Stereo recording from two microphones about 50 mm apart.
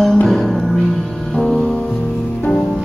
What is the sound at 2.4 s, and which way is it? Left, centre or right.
Music, left.